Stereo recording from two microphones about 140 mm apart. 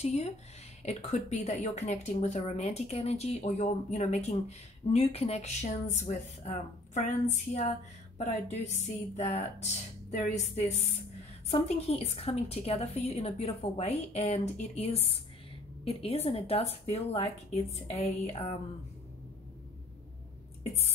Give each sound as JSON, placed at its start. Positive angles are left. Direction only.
{"t": 0.0, "sound": "speech", "side_deg": 50}